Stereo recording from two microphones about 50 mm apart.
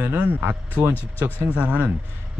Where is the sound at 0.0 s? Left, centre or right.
Right.